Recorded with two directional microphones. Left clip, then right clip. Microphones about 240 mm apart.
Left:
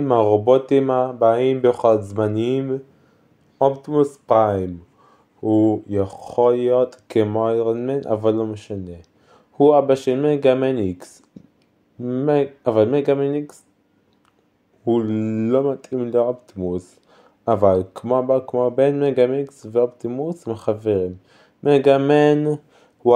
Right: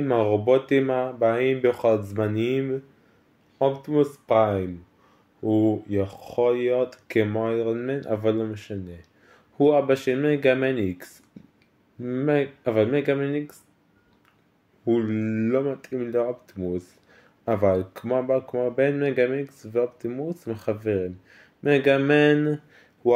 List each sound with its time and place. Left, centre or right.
0.0 s speech: centre
14.9 s speech: centre